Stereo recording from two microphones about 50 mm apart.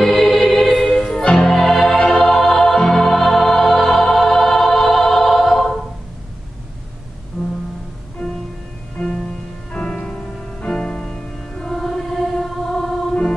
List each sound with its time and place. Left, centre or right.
0.0 s music: centre
1.0 s music: left
1.5 s music: centre
7.4 s music: centre
8.2 s music: centre
11.7 s choir: centre